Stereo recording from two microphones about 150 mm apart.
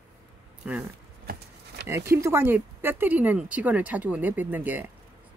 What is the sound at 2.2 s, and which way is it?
Speech, 15° right (ahead or behind).